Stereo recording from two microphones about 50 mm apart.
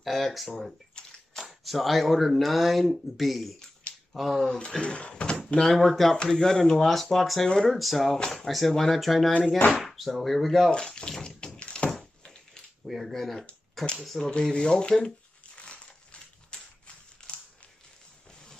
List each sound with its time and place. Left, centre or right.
0.0 s speech: centre
1.0 s bathtub: centre
1.4 s speech: centre
4.6 s speech: left
5.5 s speech: centre
7.4 s speech: centre
7.7 s speech: centre
10.7 s speech: centre
12.8 s speech: centre
14.3 s speech: centre
15.5 s crushing: left